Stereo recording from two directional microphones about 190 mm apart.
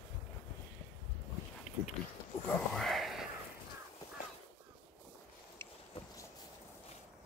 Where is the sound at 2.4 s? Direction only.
Centre (ahead or behind).